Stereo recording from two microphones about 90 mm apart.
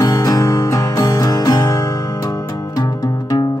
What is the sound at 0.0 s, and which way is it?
Music, 40° left (ahead or behind).